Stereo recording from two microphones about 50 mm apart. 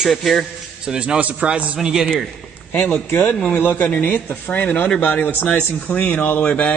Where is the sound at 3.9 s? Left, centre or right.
Left.